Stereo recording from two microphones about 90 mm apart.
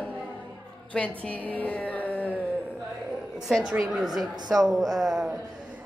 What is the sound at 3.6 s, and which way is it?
Speech, 5° right (ahead or behind).